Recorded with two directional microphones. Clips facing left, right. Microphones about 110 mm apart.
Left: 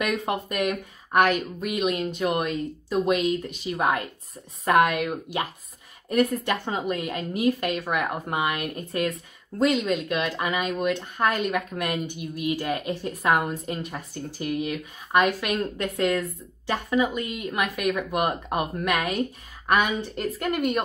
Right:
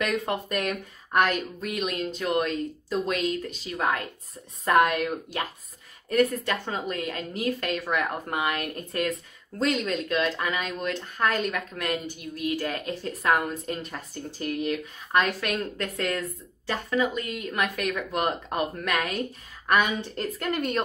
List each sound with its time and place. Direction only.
0.1 s speech: 15° left (ahead or behind)